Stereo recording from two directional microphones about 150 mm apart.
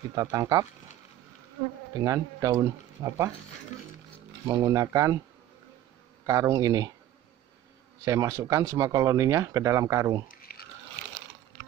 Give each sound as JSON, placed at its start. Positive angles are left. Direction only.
{"t": 0.1, "sound": "speech", "side_deg": -20}
{"t": 2.0, "sound": "speech", "side_deg": -20}
{"t": 4.5, "sound": "speech", "side_deg": -20}
{"t": 6.2, "sound": "speech", "side_deg": -20}
{"t": 8.0, "sound": "speech", "side_deg": -20}
{"t": 10.5, "sound": "a sound", "side_deg": 90}